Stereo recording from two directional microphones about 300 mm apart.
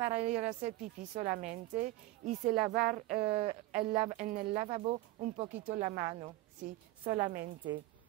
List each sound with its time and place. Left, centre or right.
0.2 s speech: right